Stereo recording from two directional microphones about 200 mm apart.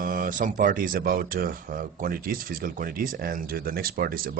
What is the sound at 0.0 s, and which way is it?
Speech, 45° right (ahead or behind).